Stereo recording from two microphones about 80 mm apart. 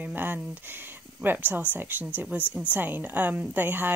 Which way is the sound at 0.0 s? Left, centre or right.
Right.